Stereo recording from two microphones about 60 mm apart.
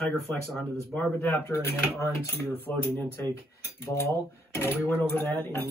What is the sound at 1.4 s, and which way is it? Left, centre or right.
Speech, left.